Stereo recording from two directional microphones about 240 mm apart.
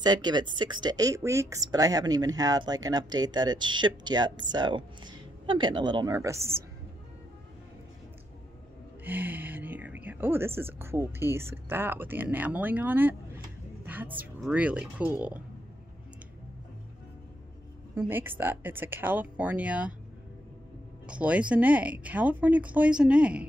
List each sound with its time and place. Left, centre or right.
0.0 s speech: centre
9.0 s a woman's voice: centre
17.9 s speech: centre
21.1 s speech: centre